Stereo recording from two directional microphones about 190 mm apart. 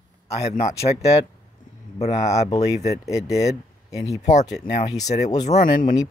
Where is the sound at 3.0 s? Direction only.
15° left (ahead or behind).